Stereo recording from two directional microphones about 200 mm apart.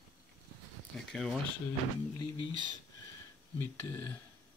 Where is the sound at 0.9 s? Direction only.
Centre (ahead or behind).